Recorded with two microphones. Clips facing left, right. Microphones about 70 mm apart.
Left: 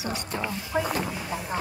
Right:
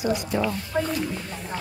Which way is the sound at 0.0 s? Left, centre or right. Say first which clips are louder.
Right 7 dB; centre.